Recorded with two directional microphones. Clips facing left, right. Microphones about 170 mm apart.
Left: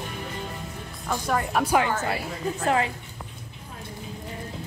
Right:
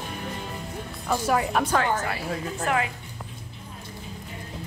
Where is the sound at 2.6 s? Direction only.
30° left (ahead or behind).